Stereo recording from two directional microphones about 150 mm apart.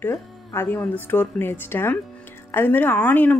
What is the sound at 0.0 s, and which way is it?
Speech, 20° left (ahead or behind).